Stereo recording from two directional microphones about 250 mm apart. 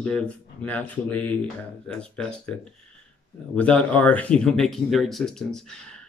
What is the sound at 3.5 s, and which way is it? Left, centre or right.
Speech, centre.